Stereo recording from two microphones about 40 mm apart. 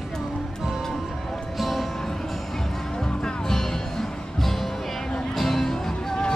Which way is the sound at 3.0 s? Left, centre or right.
Centre.